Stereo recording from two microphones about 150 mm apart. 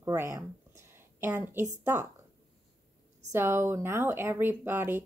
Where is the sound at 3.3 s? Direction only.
15° right (ahead or behind).